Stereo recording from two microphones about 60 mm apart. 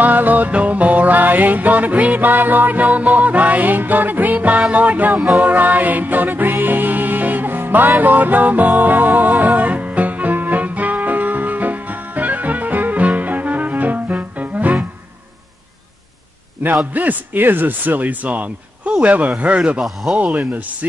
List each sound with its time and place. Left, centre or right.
0.0 s music: right
16.9 s speech: right
19.8 s speech: centre
20.2 s speech: right